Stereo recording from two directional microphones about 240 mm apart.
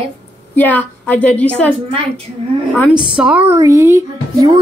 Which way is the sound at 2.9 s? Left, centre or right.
Centre.